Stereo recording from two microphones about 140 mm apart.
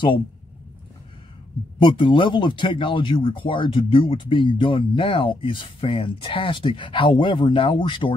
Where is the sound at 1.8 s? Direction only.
35° left (ahead or behind).